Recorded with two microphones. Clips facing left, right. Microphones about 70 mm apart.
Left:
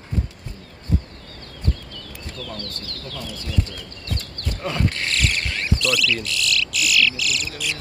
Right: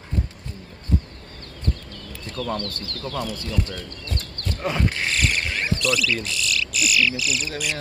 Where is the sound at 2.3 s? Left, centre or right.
Right.